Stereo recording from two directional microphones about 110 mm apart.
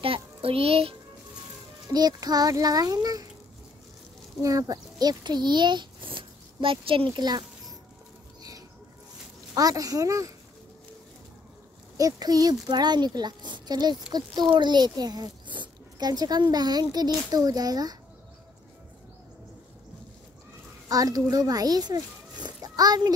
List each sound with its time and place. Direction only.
0.0 s child singing: 60° right (ahead or behind)
1.9 s a child's voice: 35° right (ahead or behind)
4.4 s a child's voice: 30° right (ahead or behind)
8.4 s a sound: 35° right (ahead or behind)
9.5 s speech: 30° right (ahead or behind)
12.0 s speech: 35° right (ahead or behind)
20.9 s a child's voice: 35° right (ahead or behind)